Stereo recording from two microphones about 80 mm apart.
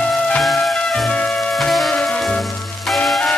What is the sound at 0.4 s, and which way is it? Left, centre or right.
Music, centre.